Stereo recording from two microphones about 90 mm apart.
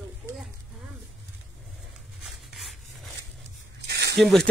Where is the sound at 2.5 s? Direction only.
Centre (ahead or behind).